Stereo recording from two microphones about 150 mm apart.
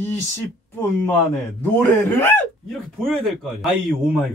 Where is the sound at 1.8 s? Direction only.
15° left (ahead or behind).